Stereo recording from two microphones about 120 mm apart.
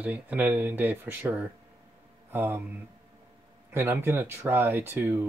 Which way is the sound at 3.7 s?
20° right (ahead or behind).